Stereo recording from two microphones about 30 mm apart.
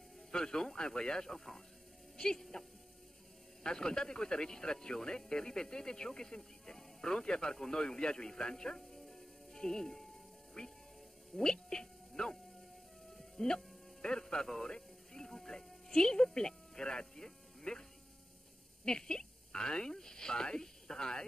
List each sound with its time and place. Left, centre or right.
0.3 s speech: left
1.3 s speech: centre
2.1 s speech: left
3.6 s speech: left
13.2 s music: centre
14.0 s speech: left
14.7 s music: left
15.3 s speech: centre
18.9 s speech: left